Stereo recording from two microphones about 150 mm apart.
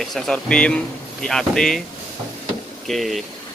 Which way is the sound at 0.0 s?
Centre (ahead or behind).